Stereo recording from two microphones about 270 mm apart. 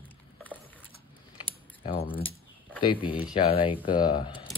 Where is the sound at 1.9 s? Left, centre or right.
Centre.